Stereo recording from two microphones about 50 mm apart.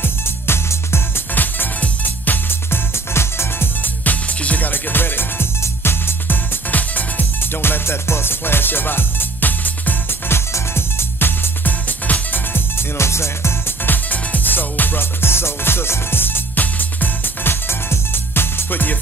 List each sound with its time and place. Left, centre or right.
0.0 s music: left
1.3 s music: left
2.9 s music: left
3.8 s music: left
7.3 s music: left
12.9 s music: left
13.8 s music: left